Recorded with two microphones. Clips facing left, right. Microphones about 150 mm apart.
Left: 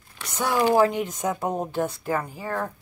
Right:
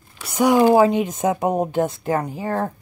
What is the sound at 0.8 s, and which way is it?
Speech, 20° right (ahead or behind).